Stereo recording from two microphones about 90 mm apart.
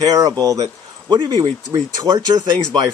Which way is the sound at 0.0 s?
40° right (ahead or behind).